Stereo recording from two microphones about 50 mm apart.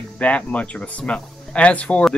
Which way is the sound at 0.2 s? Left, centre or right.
Left.